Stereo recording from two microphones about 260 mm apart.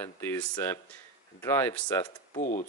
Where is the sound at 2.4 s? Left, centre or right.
Left.